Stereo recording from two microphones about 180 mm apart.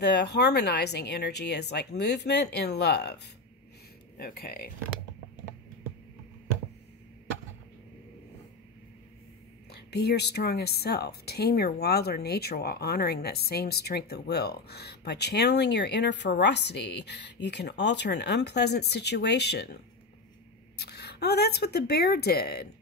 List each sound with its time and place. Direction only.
0.0 s speech: 65° left (ahead or behind)
4.2 s a woman's voice: 60° left (ahead or behind)
9.7 s a woman's voice: 65° left (ahead or behind)